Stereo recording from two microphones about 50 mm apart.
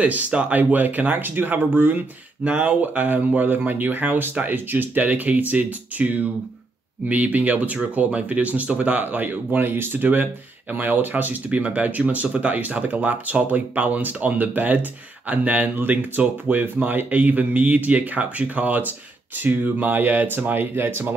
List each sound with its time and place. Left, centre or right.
0.0 s speech: right